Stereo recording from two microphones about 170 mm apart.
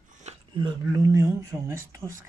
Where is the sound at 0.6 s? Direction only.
20° right (ahead or behind).